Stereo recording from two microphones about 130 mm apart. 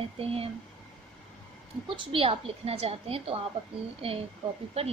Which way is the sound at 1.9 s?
45° right (ahead or behind).